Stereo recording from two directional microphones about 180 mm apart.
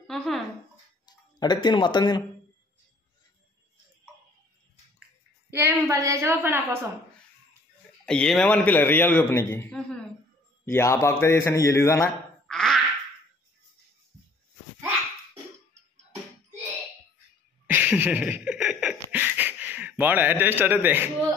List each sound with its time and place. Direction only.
0.0 s speech: 5° left (ahead or behind)
1.0 s speech: 25° left (ahead or behind)
5.5 s a woman's voice: 15° right (ahead or behind)
8.0 s a man's voice: 5° left (ahead or behind)
12.4 s quack: centre (ahead or behind)
17.6 s a sound: 10° right (ahead or behind)